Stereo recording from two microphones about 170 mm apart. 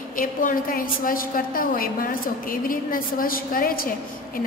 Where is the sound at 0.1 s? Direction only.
55° left (ahead or behind).